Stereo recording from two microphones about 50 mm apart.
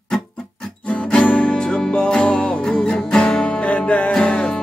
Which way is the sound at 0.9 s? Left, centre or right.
Centre.